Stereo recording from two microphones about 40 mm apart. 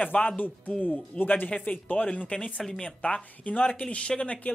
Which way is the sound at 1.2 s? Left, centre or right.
Left.